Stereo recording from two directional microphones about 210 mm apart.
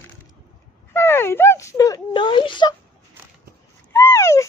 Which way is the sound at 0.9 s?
10° left (ahead or behind).